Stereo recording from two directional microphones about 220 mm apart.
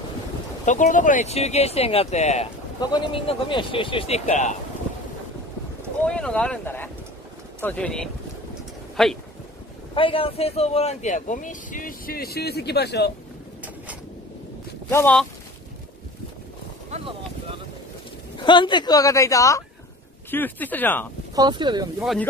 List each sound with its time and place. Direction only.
0.7 s speech: 35° left (ahead or behind)
6.0 s speech: 5° left (ahead or behind)
9.9 s speech: 25° left (ahead or behind); by 13.1 s 50° left (ahead or behind)
14.9 s speech: 10° left (ahead or behind)
16.9 s a sound: 25° right (ahead or behind)
18.4 s speech: 20° left (ahead or behind)
21.4 s speech: 20° right (ahead or behind)
22.0 s speech: centre (ahead or behind)